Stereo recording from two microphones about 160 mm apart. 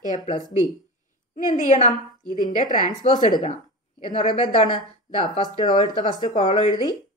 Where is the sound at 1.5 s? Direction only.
50° left (ahead or behind).